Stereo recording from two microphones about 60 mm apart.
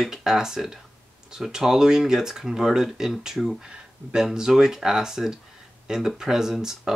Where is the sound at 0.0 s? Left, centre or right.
Centre.